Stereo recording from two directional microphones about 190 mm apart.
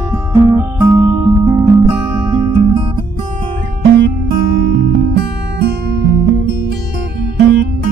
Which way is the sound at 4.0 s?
50° right (ahead or behind).